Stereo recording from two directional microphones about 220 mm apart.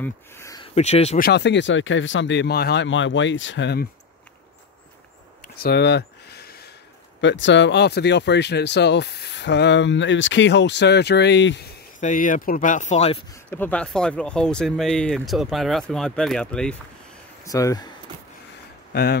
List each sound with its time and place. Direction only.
0.0 s speech: 15° left (ahead or behind)
0.7 s speech: 30° left (ahead or behind)
1.2 s speech: 50° left (ahead or behind)
5.4 s a sound: 45° left (ahead or behind)
7.2 s speech: 55° left (ahead or behind)
12.0 s speech: 35° left (ahead or behind)
13.3 s speech: 10° left (ahead or behind)
17.5 s speech: 15° left (ahead or behind)